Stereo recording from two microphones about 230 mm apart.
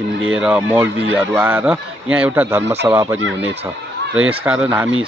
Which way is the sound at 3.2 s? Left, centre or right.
Right.